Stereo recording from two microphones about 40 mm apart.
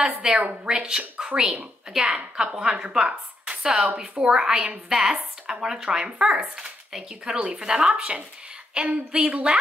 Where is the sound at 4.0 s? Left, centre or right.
Centre.